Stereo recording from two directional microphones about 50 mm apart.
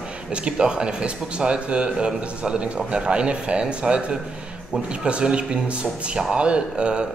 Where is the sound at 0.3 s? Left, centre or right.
Right.